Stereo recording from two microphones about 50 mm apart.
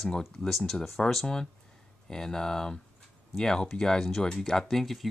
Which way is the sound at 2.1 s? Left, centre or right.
Centre.